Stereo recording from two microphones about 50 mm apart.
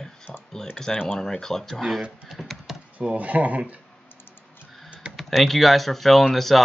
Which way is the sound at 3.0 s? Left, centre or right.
Right.